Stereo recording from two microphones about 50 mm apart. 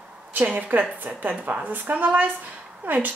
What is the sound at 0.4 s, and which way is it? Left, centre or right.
A woman's voice, right.